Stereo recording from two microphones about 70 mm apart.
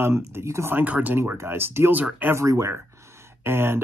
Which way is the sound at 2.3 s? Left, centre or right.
Right.